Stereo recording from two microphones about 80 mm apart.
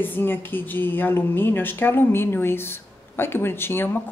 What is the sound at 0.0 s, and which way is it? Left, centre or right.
A woman's voice, left.